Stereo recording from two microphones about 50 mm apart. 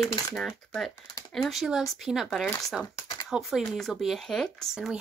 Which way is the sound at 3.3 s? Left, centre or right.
Centre.